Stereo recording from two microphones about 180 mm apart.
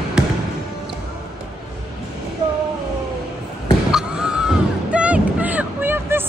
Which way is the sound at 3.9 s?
5° right (ahead or behind).